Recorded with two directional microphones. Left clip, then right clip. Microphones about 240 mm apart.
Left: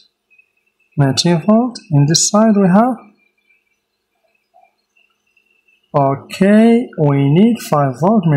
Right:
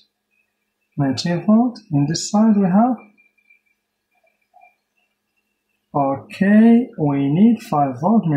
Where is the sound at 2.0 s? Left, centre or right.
Left.